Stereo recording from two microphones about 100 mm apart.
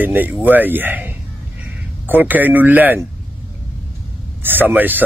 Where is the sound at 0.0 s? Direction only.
20° right (ahead or behind).